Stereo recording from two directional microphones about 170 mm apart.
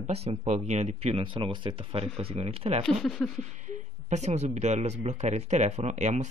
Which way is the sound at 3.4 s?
45° right (ahead or behind).